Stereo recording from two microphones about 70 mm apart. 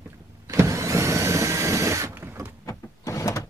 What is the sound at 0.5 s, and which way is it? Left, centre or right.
Vacuum cleaner, right.